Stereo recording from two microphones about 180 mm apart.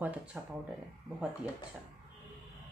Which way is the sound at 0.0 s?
5° right (ahead or behind).